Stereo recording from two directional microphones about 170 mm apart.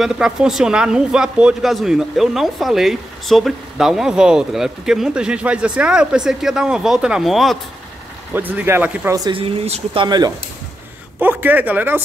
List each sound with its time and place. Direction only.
0.0 s speech: 5° right (ahead or behind)
9.1 s speech: 25° right (ahead or behind)
9.4 s speech: 35° right (ahead or behind)
10.0 s speech: 25° right (ahead or behind)
11.1 s speech: 10° right (ahead or behind)